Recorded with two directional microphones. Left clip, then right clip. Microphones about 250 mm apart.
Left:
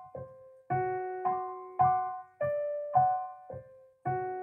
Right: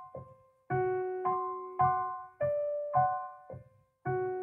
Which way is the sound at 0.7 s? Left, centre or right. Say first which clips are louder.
Even; centre.